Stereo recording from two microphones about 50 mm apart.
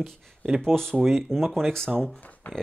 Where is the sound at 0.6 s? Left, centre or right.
Centre.